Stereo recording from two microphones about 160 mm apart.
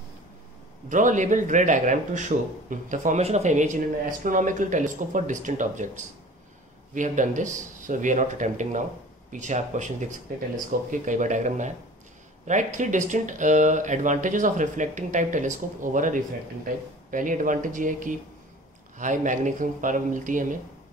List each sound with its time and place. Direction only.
0.8 s a man's voice: 50° right (ahead or behind)